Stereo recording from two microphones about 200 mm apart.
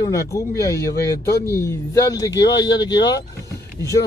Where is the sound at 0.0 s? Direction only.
15° left (ahead or behind).